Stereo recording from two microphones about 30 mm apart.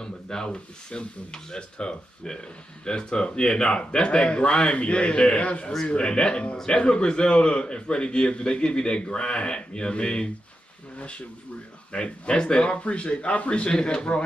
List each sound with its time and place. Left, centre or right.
0.0 s speech: left
13.7 s speech: left